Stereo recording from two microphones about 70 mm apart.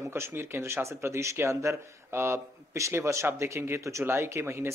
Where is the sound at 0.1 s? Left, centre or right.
Right.